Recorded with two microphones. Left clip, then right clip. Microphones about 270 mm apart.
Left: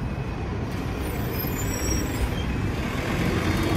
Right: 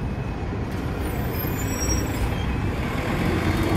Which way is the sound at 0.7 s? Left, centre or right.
Right.